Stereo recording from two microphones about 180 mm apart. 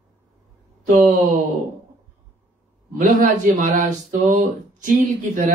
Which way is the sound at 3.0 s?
45° right (ahead or behind).